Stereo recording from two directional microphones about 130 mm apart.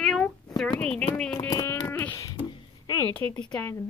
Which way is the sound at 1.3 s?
30° left (ahead or behind).